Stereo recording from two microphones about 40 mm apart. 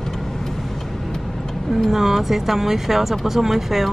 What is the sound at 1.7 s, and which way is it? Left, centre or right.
Speech, centre.